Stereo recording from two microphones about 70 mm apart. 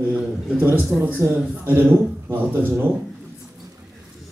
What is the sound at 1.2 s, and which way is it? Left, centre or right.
Speech, right.